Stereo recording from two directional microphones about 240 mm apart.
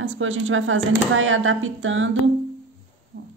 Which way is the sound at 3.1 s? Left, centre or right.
Right.